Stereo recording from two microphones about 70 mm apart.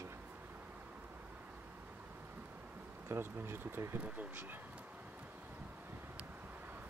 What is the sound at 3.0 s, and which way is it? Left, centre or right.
Speech, right.